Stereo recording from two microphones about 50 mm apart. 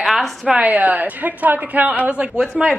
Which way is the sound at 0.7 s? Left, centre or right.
Right.